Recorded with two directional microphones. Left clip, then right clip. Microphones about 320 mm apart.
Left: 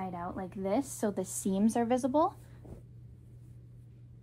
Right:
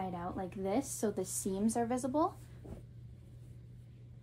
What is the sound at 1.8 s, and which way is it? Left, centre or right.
Speech, centre.